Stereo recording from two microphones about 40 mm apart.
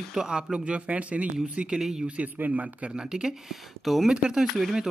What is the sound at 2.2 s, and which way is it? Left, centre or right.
Speech, right.